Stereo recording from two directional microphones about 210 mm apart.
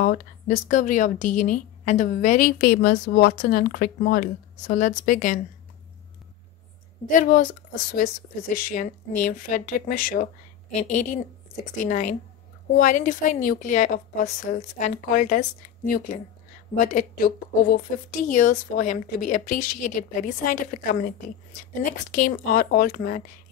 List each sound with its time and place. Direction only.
0.0 s a woman's voice: 40° left (ahead or behind)
7.1 s a woman's voice: 40° left (ahead or behind)
8.5 s a woman's voice: 40° left (ahead or behind)
22.1 s speech: 45° left (ahead or behind)